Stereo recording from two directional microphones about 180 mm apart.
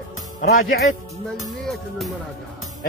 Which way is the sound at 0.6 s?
45° left (ahead or behind).